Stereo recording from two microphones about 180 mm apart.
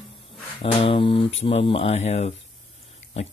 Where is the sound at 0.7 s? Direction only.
30° left (ahead or behind).